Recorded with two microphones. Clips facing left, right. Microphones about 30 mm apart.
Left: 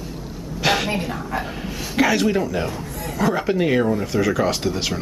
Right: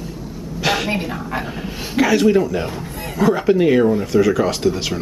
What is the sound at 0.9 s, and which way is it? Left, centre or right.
A woman's voice, centre.